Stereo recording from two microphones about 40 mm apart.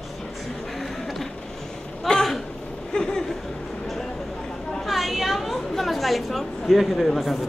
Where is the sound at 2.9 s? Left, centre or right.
Centre.